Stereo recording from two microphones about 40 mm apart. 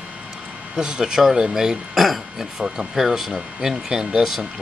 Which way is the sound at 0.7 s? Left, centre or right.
Centre.